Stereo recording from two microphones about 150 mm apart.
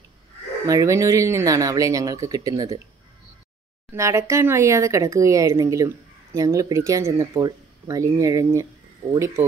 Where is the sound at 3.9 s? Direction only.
20° right (ahead or behind).